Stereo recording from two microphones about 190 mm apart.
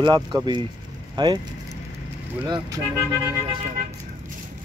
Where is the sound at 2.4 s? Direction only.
20° right (ahead or behind).